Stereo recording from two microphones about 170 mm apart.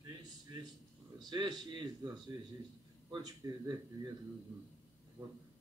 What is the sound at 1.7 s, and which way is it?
A man's voice, 25° right (ahead or behind).